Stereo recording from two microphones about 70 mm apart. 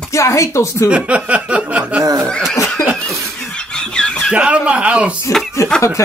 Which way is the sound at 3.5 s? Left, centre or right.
Centre.